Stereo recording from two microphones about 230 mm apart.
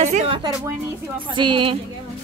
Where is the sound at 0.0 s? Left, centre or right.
Right.